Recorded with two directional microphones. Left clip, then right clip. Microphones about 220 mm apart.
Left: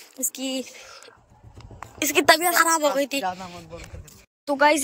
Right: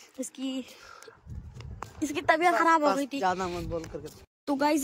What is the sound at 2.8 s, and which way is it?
Speech, 15° left (ahead or behind).